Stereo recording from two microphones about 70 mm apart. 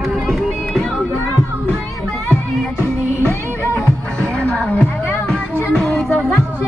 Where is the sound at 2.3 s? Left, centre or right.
Left.